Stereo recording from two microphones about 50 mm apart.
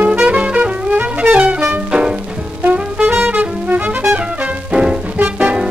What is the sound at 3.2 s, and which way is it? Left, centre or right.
Music, right.